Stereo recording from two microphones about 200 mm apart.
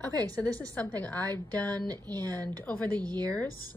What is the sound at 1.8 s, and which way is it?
Speech, 20° right (ahead or behind).